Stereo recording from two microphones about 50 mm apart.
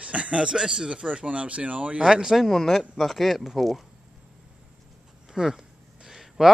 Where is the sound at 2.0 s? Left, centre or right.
Centre.